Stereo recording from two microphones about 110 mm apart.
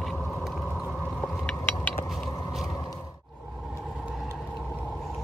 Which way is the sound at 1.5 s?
15° left (ahead or behind).